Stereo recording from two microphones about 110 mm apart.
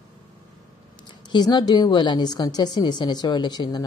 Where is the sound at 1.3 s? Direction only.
40° left (ahead or behind).